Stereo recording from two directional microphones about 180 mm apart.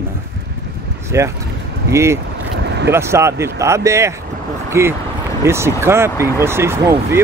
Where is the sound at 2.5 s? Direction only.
70° right (ahead or behind).